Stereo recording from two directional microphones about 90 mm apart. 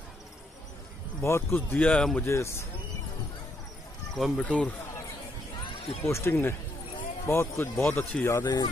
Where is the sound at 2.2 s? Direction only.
30° left (ahead or behind).